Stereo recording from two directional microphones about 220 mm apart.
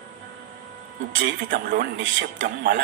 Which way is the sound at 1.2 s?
40° right (ahead or behind).